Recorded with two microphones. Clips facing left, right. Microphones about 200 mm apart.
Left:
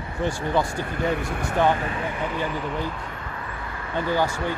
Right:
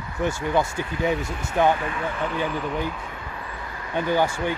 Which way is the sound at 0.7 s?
50° left (ahead or behind).